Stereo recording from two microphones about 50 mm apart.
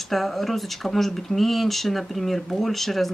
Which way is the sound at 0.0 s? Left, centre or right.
Centre.